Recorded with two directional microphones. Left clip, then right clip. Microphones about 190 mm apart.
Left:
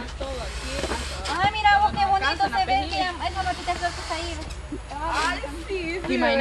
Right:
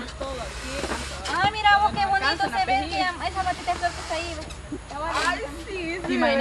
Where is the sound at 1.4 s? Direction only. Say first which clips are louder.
Even; 30° right (ahead or behind).